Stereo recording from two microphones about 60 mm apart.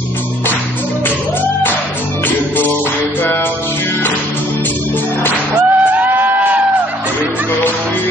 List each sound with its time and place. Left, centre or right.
5.5 s music: right